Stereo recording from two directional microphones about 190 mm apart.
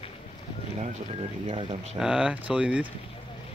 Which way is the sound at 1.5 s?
35° right (ahead or behind).